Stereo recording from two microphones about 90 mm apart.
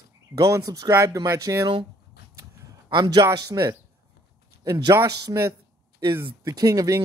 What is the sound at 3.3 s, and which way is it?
A man's voice, 40° right (ahead or behind).